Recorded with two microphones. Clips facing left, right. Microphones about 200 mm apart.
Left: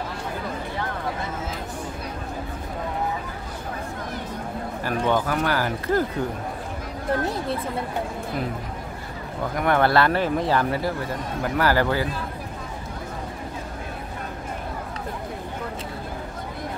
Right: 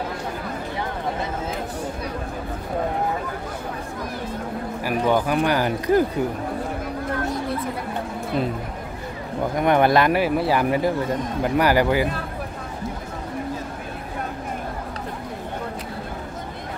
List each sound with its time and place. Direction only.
4.8 s speech: 10° right (ahead or behind)
9.6 s speech: 15° right (ahead or behind)